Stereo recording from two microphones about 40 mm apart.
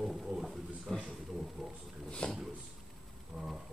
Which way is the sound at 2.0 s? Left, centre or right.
Left.